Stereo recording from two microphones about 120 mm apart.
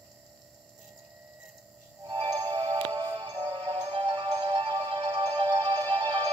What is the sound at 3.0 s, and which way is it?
Music, 45° right (ahead or behind).